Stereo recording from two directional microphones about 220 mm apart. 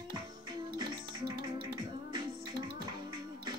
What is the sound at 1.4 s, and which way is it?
Music, 20° right (ahead or behind).